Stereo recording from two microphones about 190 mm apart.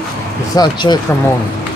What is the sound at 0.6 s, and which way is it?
Speech, 25° left (ahead or behind).